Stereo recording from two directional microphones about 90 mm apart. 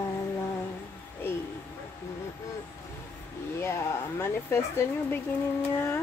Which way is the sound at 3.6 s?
30° left (ahead or behind).